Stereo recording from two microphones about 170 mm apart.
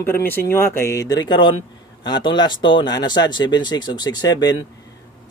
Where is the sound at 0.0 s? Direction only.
15° left (ahead or behind).